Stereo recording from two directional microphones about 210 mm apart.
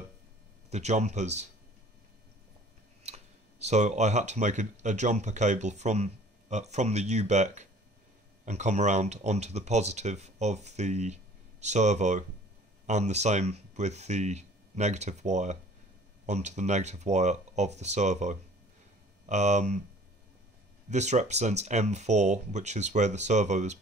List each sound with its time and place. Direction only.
0.7 s speech: 30° right (ahead or behind)
3.0 s speech: 30° right (ahead or behind)
20.9 s speech: 35° right (ahead or behind)